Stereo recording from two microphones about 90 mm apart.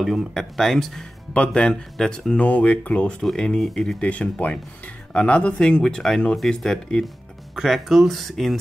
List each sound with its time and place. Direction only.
0.0 s speech: centre (ahead or behind)